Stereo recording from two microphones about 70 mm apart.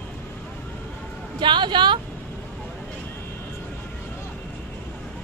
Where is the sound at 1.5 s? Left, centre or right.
Right.